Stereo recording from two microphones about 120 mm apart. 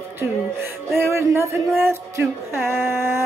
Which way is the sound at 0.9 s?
20° right (ahead or behind).